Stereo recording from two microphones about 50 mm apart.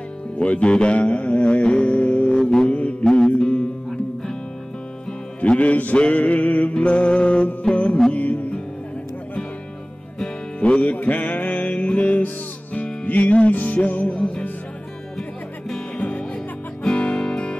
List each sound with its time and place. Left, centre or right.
0.4 s music: left
2.7 s mantra: left
3.1 s music: centre
5.4 s music: left
10.6 s music: left
14.0 s music: left
16.8 s music: left